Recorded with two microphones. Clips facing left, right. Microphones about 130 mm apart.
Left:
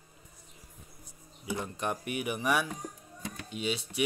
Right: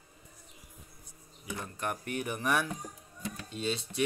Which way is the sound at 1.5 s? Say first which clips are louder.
Left 3 dB; 20° left (ahead or behind).